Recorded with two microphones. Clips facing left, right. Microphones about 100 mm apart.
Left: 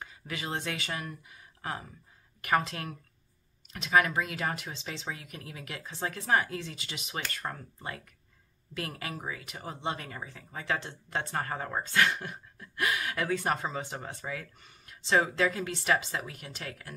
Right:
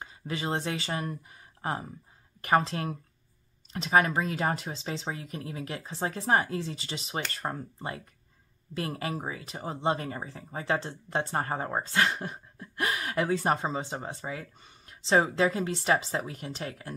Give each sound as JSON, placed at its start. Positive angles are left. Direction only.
{"t": 0.0, "sound": "speech", "side_deg": -30}